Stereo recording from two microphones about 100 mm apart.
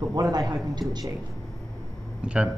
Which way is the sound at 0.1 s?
40° right (ahead or behind).